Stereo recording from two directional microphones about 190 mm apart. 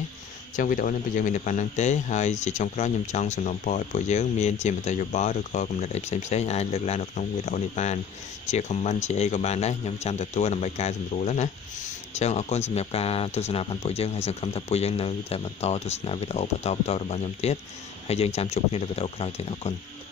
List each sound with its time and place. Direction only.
0.6 s speech: 45° left (ahead or behind)